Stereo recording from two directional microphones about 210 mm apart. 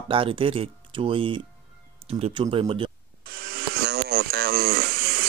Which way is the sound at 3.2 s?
45° right (ahead or behind).